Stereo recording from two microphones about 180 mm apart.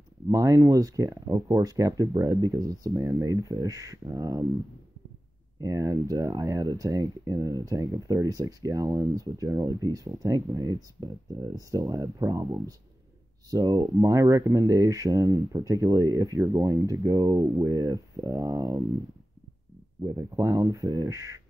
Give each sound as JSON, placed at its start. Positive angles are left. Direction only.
{"t": 0.3, "sound": "speech", "side_deg": -20}
{"t": 5.6, "sound": "speech", "side_deg": -20}
{"t": 20.0, "sound": "speech", "side_deg": -15}